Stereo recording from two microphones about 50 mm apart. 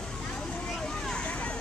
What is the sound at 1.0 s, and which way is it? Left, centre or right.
Vehicle, left.